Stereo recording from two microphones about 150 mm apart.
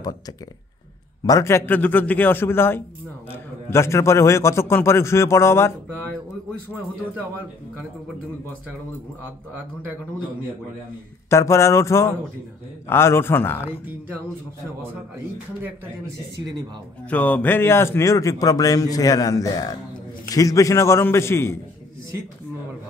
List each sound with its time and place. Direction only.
1.2 s a man's voice: 20° left (ahead or behind)
11.2 s a man's voice: 20° left (ahead or behind)
17.1 s speech: 10° left (ahead or behind)